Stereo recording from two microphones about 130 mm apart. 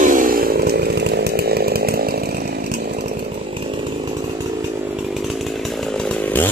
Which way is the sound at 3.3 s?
40° right (ahead or behind).